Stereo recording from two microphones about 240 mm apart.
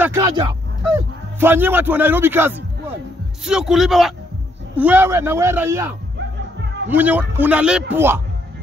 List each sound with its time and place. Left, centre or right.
0.0 s a man's voice: centre